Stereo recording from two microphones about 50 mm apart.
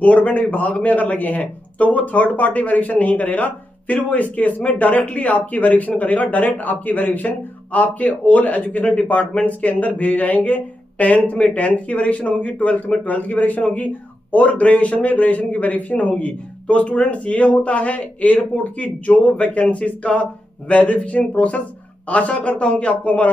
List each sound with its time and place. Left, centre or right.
0.0 s a man's voice: left